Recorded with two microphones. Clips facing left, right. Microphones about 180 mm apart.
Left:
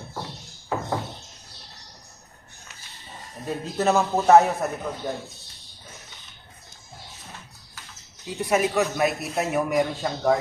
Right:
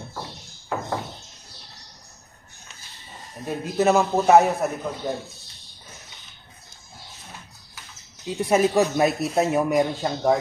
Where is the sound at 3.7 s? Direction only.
10° right (ahead or behind).